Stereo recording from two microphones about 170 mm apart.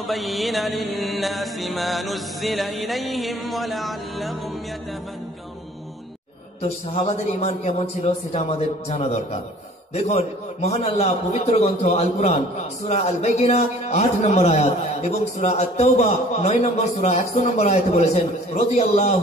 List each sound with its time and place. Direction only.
0.0 s music: centre (ahead or behind)
6.6 s a man's voice: 35° left (ahead or behind)